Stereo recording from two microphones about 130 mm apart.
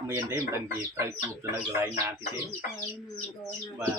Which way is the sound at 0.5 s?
20° right (ahead or behind).